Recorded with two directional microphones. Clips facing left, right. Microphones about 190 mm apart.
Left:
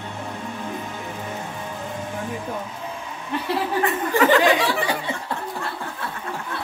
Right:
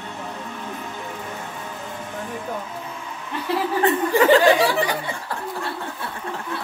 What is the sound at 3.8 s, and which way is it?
Chuckle, 30° right (ahead or behind).